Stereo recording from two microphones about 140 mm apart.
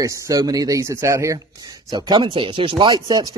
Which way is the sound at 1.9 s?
35° right (ahead or behind).